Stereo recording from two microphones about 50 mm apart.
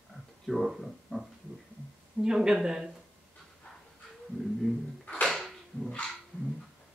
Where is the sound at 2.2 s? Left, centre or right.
Centre.